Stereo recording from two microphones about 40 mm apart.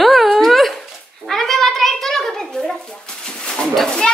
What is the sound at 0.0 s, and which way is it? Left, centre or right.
Dog, centre.